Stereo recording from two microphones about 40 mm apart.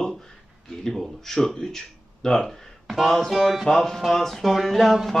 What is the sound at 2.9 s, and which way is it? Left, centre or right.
Speech, centre.